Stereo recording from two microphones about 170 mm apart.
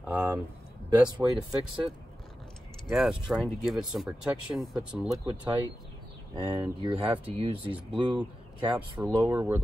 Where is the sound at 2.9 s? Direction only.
Centre (ahead or behind).